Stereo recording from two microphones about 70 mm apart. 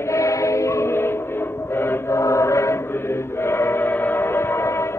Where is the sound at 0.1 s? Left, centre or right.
Left.